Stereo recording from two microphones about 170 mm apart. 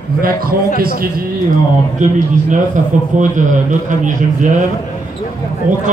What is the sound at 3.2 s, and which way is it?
Speech, 50° right (ahead or behind).